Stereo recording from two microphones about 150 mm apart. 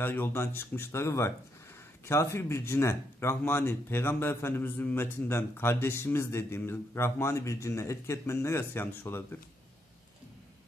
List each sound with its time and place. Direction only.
0.0 s speech: 15° left (ahead or behind)